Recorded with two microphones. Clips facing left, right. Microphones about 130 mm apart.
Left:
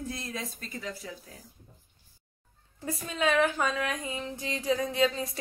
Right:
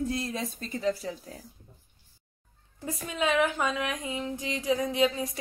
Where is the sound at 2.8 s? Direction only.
15° right (ahead or behind).